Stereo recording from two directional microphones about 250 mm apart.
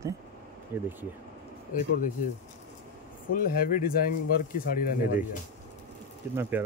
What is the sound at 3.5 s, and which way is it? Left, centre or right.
Speech, left.